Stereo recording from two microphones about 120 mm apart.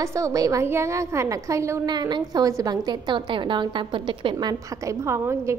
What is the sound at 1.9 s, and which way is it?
A woman's voice, 35° right (ahead or behind).